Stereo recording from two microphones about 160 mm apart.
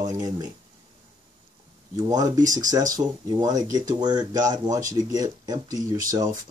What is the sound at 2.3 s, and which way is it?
Speech, 20° right (ahead or behind).